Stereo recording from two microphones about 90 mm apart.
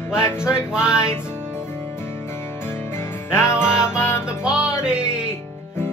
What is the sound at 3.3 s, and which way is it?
Music, 10° right (ahead or behind).